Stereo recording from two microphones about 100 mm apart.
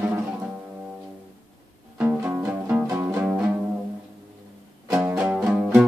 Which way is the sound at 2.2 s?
15° right (ahead or behind).